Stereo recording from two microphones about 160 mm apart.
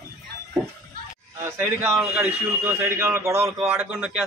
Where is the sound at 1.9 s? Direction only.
Centre (ahead or behind).